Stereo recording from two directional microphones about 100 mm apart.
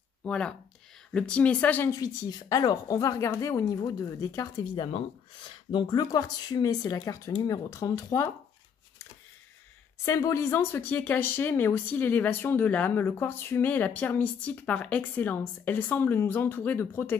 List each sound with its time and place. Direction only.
0.2 s a woman's voice: 10° left (ahead or behind)
1.9 s speech: 40° left (ahead or behind)
5.7 s speech: 45° left (ahead or behind)
10.0 s speech: 30° left (ahead or behind)